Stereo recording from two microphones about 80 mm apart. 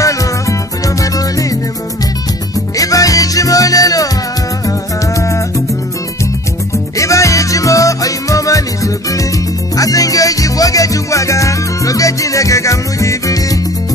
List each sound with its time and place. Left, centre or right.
0.0 s music: left
2.8 s music: left
7.0 s music: left